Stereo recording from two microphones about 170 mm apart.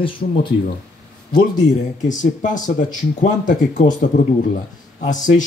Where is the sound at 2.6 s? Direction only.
50° left (ahead or behind).